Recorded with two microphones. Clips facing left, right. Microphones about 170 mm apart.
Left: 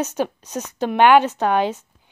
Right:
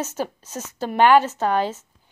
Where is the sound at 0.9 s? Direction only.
65° left (ahead or behind).